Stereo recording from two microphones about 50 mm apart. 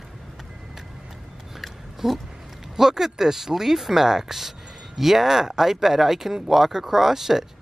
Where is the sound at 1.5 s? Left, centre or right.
Centre.